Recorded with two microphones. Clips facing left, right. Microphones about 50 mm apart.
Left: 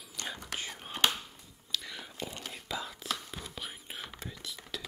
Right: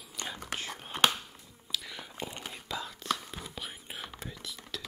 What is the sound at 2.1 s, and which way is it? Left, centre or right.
Whispering, centre.